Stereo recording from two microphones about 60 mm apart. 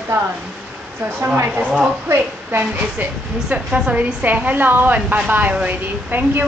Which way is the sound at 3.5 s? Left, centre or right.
Right.